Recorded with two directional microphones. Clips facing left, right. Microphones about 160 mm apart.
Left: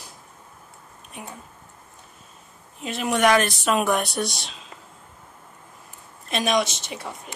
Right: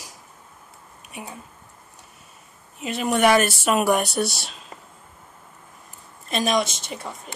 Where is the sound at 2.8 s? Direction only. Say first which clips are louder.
Right 1 dB; centre (ahead or behind).